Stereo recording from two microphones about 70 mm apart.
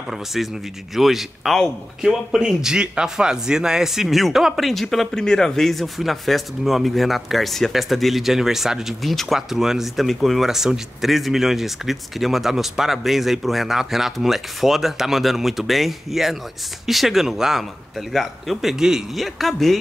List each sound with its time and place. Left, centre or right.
0.9 s speech: centre